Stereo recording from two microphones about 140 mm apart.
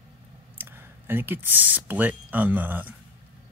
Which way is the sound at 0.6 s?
15° right (ahead or behind).